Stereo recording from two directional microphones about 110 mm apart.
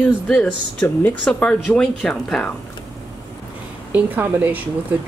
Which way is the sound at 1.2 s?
10° left (ahead or behind).